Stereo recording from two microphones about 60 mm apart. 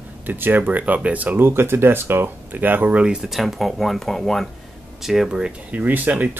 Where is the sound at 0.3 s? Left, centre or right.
Right.